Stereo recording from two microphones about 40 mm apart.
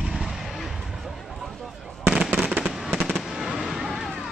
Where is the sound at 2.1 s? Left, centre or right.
Centre.